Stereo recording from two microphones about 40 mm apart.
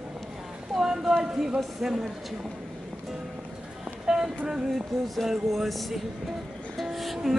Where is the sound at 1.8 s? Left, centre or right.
Centre.